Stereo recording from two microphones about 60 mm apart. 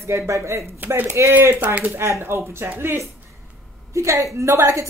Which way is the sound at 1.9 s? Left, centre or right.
Right.